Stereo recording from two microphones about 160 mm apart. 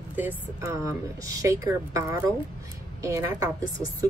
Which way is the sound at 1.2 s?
20° right (ahead or behind).